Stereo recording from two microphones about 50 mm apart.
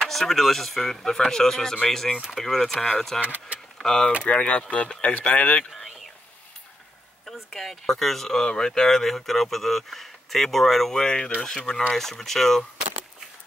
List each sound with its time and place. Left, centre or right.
0.0 s speech: centre
3.3 s speech: right
3.7 s speech: centre
4.2 s speech: left
7.2 s speech: centre